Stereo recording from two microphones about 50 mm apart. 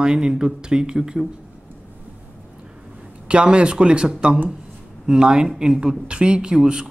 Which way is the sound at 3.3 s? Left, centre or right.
Right.